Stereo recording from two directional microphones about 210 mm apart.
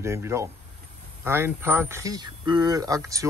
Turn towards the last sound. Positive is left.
turn(degrees=-15)  # may be behind; listen again after turning